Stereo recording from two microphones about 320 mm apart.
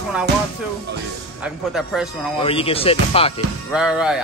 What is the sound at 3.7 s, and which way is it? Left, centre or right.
Speech, centre.